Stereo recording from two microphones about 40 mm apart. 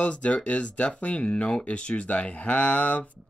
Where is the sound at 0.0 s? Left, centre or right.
Left.